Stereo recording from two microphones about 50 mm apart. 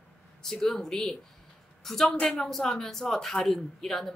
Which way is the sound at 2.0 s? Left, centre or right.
Centre.